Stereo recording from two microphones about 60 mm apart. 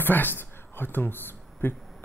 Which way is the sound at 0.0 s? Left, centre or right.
Left.